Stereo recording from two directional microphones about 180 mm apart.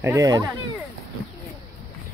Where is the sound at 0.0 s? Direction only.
20° right (ahead or behind).